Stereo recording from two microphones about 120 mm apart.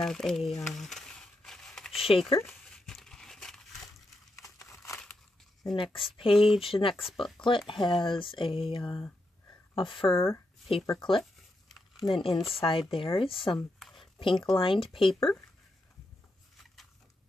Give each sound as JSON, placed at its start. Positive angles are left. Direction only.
{"t": 0.0, "sound": "a sound", "side_deg": 5}
{"t": 2.0, "sound": "speech", "side_deg": 50}
{"t": 2.4, "sound": "crumpling", "side_deg": 0}
{"t": 4.4, "sound": "crumpling", "side_deg": 25}
{"t": 6.1, "sound": "speech", "side_deg": 50}
{"t": 10.1, "sound": "speech", "side_deg": 20}
{"t": 10.9, "sound": "speech", "side_deg": 45}
{"t": 13.9, "sound": "a sound", "side_deg": 45}
{"t": 14.6, "sound": "speech", "side_deg": 45}